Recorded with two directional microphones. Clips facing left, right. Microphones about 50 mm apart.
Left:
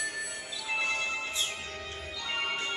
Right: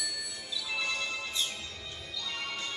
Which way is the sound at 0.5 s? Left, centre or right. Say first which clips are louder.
Left 2 dB; left.